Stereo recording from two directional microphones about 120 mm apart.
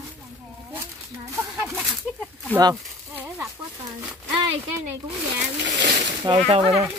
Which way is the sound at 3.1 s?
20° right (ahead or behind).